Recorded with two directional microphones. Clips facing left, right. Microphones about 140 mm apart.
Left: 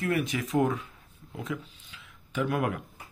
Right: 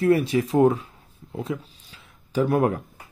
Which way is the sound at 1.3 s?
30° right (ahead or behind).